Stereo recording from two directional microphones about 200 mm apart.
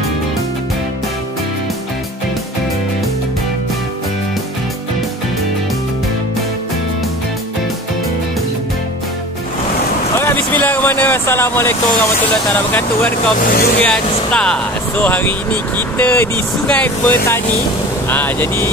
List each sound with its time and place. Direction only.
10.1 s vehicle: 10° left (ahead or behind)
13.4 s speech: 45° left (ahead or behind)
13.7 s speech: 5° left (ahead or behind)